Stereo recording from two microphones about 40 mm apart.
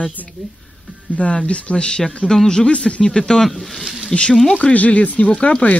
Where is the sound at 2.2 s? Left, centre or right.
Centre.